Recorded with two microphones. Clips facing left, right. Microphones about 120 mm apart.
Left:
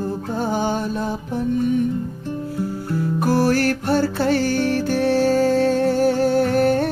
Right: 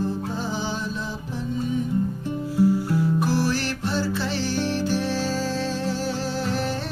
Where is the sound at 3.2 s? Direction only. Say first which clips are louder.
Left 6 dB; 55° left (ahead or behind).